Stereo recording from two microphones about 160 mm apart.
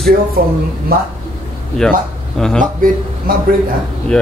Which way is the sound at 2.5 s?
60° right (ahead or behind).